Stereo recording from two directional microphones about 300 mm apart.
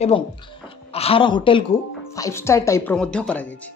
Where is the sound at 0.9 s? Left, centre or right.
Centre.